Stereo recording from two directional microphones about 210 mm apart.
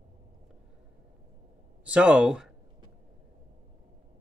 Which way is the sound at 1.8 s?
5° right (ahead or behind).